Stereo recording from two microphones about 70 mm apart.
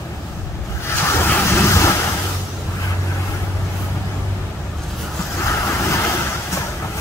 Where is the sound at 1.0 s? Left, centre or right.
Left.